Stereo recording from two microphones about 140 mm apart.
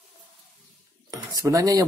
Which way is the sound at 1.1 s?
25° right (ahead or behind).